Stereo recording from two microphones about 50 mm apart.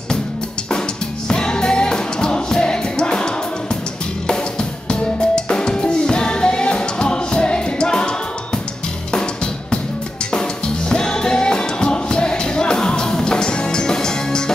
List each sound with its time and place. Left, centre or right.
1.3 s music: centre
9.1 s drum kit: centre
10.9 s music: centre